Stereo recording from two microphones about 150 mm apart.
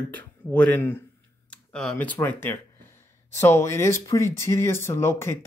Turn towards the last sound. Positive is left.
turn(degrees=15)  # may be behind; listen again after turning